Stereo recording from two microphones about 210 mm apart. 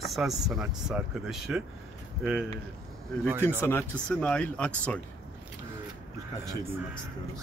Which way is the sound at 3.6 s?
10° left (ahead or behind).